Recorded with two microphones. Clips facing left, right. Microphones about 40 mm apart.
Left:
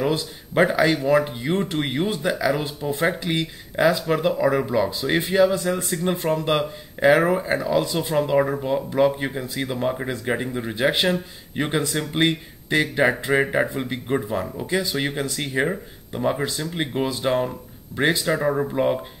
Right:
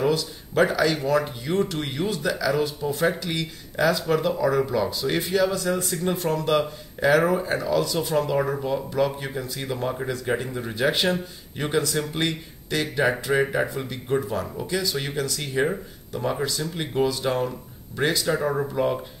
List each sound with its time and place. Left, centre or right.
0.0 s speech: left